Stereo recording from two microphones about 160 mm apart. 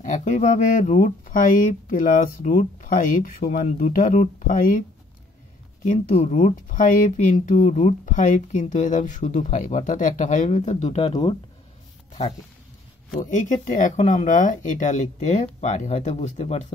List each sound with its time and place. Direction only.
0.0 s speech: 50° left (ahead or behind)
5.9 s speech: 50° left (ahead or behind); by 11.3 s 35° left (ahead or behind)
12.1 s speech: 45° left (ahead or behind)